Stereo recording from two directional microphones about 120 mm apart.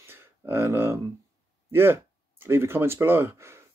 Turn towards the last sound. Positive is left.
turn(degrees=-20)  # may be behind; listen again after turning